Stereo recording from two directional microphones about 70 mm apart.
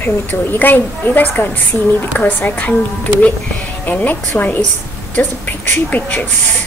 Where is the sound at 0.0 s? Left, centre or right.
Left.